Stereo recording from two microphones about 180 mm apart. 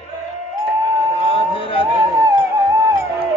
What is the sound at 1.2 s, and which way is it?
Music, 30° left (ahead or behind).